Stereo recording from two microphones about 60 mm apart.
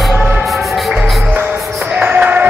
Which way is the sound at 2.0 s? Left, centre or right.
Right.